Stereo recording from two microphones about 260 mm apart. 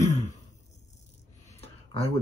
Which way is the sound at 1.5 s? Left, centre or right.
Left.